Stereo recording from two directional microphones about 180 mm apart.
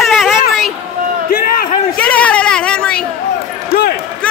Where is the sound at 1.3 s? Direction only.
50° left (ahead or behind).